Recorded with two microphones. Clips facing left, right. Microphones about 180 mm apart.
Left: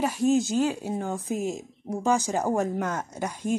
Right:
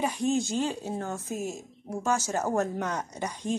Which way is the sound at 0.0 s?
5° left (ahead or behind).